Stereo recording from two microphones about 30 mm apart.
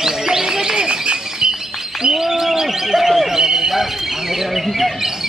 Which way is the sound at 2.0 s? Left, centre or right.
Centre.